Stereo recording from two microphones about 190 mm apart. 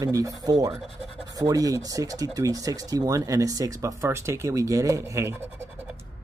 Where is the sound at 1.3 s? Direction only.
20° right (ahead or behind).